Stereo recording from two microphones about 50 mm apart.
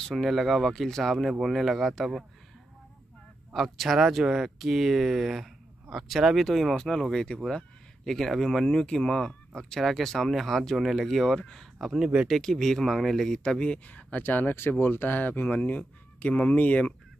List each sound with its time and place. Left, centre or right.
0.0 s speech: centre
3.5 s speech: centre
11.8 s speech: centre
12.4 s speech: centre
13.4 s speech: centre
13.8 s speech: left